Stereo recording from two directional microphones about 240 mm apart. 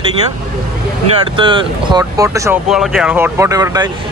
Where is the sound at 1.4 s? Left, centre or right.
Centre.